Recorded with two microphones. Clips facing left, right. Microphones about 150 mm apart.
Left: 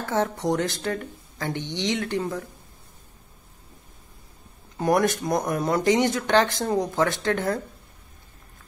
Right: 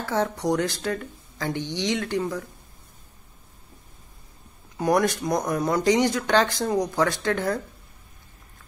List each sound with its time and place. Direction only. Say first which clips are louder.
0.1 s speech: even; 20° left (ahead or behind)
4.7 s speech: even; 20° left (ahead or behind)